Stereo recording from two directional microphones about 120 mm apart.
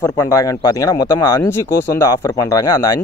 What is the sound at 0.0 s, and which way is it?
Speech, 25° left (ahead or behind).